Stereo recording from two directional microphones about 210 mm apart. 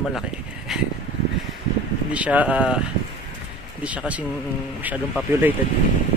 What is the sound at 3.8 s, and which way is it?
Speech, 5° right (ahead or behind).